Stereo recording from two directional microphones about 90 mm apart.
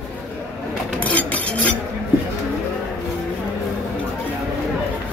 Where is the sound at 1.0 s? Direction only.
15° left (ahead or behind).